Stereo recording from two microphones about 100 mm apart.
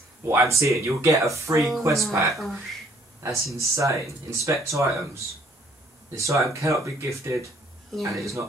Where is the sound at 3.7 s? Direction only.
30° right (ahead or behind).